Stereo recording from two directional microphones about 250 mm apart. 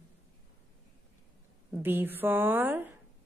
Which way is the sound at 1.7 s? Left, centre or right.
Centre.